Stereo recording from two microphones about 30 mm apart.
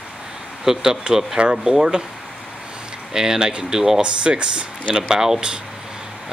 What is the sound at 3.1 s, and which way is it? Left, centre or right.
Speech, centre.